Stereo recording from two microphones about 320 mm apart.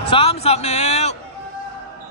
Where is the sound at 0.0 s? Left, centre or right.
Centre.